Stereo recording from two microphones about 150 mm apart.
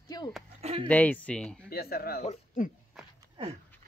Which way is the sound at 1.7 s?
90° left.